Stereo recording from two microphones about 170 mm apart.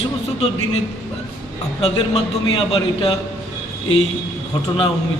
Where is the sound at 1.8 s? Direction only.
35° left (ahead or behind).